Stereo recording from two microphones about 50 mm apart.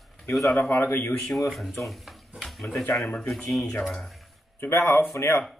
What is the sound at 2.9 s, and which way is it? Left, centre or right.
Speech, centre.